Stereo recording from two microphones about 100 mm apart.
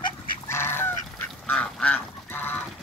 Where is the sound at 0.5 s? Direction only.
25° left (ahead or behind).